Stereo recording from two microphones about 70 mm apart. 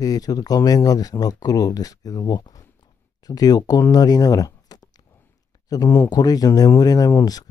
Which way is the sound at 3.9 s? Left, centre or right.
Left.